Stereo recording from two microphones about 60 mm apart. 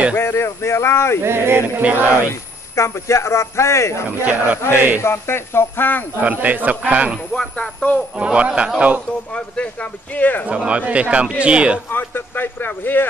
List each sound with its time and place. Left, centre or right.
0.1 s speech: left
1.2 s speech: right
1.8 s speech: right
2.2 s speech: left
4.2 s speech: right
5.0 s speech: left
6.1 s speech: right
7.3 s speech: centre
8.2 s speech: centre
9.3 s speech: left
10.5 s speech: centre
11.9 s speech: left